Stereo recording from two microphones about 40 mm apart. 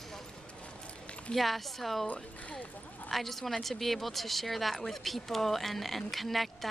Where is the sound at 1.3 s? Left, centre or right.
Centre.